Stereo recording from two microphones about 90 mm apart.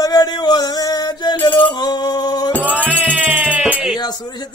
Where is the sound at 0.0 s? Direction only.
45° left (ahead or behind).